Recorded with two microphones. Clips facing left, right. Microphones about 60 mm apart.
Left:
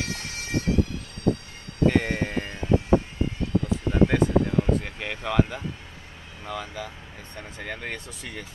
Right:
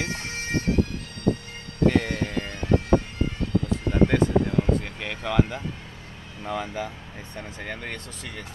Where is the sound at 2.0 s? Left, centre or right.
Centre.